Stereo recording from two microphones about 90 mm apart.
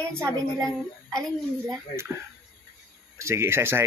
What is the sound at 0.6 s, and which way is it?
Speech, 5° left (ahead or behind).